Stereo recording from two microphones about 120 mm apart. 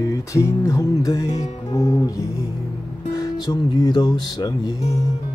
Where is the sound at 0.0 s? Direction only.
25° left (ahead or behind).